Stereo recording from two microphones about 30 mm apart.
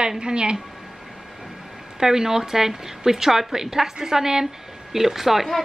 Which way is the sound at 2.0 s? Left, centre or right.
Centre.